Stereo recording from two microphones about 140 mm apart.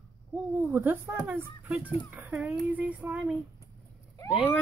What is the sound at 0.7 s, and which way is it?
Speech, 15° right (ahead or behind).